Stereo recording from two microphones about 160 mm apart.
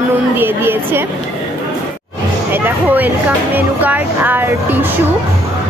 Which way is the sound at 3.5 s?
10° right (ahead or behind).